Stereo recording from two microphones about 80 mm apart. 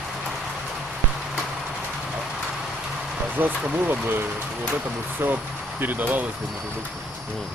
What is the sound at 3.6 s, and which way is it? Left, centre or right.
Speech, centre.